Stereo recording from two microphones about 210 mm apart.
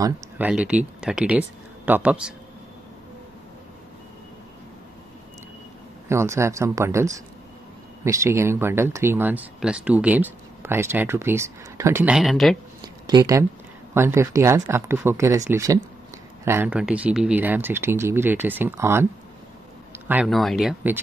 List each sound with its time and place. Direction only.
0.0 s speech: 5° right (ahead or behind)
6.0 s speech: 15° right (ahead or behind)
12.8 s a sound: 20° right (ahead or behind)
13.9 s speech: 10° right (ahead or behind)
20.1 s speech: 5° right (ahead or behind)